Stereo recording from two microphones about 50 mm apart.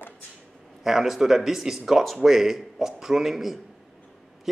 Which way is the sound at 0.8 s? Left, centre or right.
Centre.